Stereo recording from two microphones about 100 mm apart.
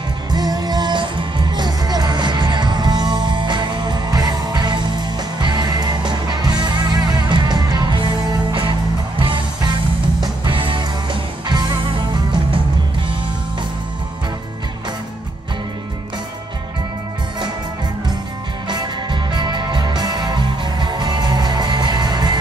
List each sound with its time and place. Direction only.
0.3 s music: 40° right (ahead or behind)
18.7 s music: 50° right (ahead or behind)